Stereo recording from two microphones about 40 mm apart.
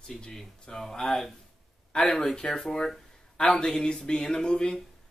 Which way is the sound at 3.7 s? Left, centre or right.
Centre.